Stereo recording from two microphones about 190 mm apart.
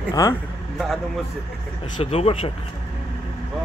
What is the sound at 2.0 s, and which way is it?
Speech, 30° left (ahead or behind).